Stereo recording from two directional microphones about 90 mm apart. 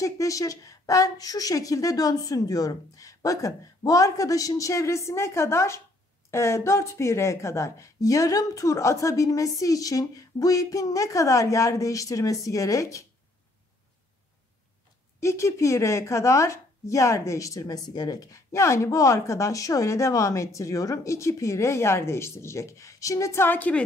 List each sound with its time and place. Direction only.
0.0 s speech: 40° left (ahead or behind)
15.1 s speech: 30° left (ahead or behind)